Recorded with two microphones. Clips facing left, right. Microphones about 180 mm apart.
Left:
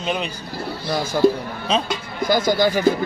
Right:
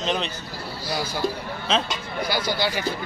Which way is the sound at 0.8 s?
50° left (ahead or behind).